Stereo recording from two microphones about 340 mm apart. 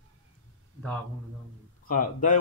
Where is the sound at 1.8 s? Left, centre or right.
Left.